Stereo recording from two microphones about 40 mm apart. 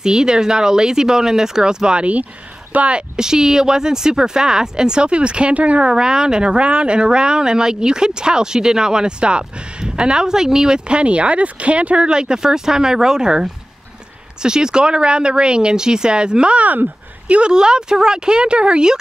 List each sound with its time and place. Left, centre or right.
0.0 s speech: centre
2.7 s speech: right
3.2 s speech: centre; by 5.9 s right
5.9 s speech: centre
16.5 s speech: right
17.5 s speech: centre